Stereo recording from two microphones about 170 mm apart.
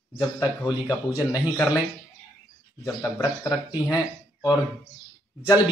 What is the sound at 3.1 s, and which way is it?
Speech, 20° left (ahead or behind).